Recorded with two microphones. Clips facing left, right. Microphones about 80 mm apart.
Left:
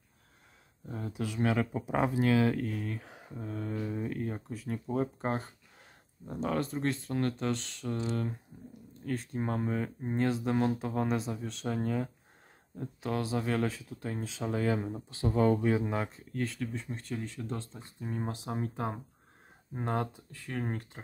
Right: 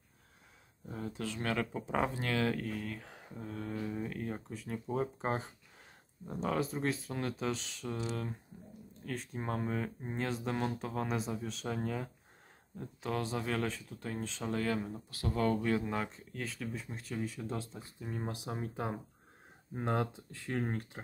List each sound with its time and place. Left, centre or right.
0.8 s speech: centre
1.1 s speech: centre
20.1 s speech: right